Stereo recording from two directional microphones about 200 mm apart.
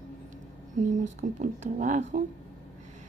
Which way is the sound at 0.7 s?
40° right (ahead or behind).